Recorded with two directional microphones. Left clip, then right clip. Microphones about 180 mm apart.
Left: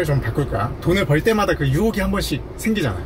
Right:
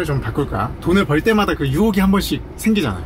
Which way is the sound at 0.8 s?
20° right (ahead or behind).